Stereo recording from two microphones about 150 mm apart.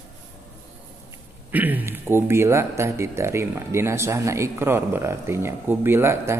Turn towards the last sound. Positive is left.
turn(degrees=-15)  # may be behind; listen again after turning